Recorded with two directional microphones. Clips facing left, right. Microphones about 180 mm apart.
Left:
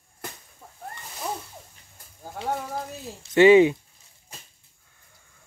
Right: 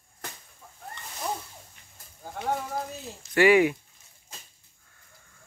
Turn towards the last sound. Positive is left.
turn(degrees=25)  # may be behind; listen again after turning